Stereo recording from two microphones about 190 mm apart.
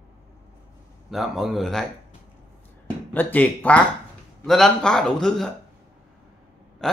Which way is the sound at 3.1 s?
10° left (ahead or behind).